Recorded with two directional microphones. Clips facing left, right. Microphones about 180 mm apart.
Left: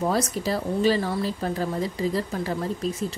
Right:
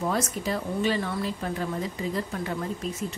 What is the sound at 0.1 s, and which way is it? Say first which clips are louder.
Speech: left 3 dB; 35° left (ahead or behind).